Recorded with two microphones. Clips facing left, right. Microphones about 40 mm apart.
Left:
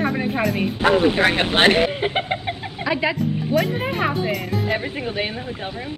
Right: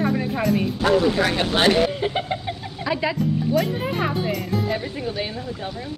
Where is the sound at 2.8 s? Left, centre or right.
Centre.